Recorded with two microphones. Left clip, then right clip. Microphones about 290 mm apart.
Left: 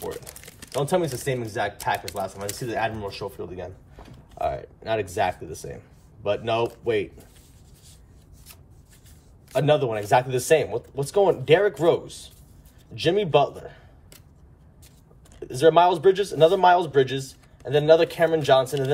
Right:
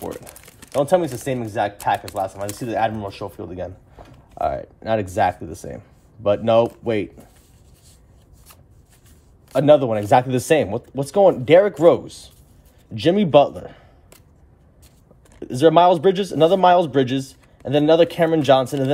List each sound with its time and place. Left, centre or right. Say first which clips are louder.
0.7 s speech: right 6 dB; right
9.7 s speech: right 7 dB; right
15.4 s speech: right 4 dB; right